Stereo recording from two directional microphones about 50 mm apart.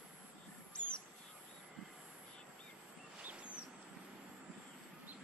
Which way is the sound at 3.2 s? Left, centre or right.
Right.